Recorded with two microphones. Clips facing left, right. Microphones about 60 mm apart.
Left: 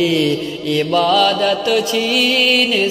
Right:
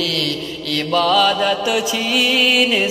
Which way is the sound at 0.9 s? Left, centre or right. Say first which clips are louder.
Even; centre.